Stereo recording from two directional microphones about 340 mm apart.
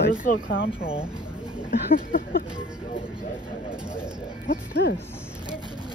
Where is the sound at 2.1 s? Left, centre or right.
Left.